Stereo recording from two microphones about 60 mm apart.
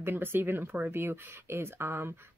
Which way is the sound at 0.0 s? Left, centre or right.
Right.